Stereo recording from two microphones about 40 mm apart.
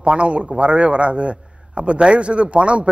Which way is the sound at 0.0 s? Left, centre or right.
Right.